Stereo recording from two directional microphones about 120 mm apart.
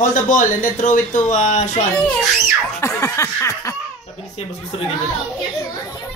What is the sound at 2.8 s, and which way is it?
Speech, 25° left (ahead or behind).